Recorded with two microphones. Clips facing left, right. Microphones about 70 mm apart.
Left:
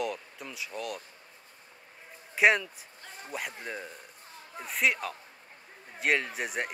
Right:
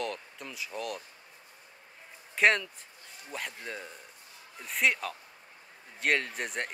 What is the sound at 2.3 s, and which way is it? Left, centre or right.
Speech, centre.